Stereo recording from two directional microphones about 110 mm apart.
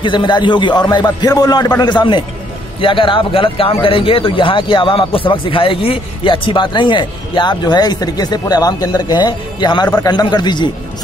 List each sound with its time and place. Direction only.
0.0 s a man's voice: 45° left (ahead or behind)